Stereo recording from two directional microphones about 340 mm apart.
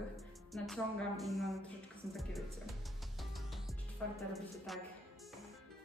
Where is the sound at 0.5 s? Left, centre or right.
Centre.